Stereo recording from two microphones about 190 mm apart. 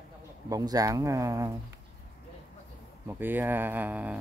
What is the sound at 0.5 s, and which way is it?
Speech, 20° right (ahead or behind).